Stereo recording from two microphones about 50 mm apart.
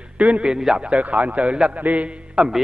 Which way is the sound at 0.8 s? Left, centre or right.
Right.